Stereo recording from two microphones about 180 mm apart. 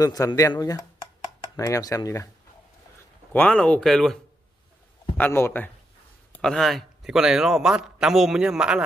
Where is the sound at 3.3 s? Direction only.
5° left (ahead or behind).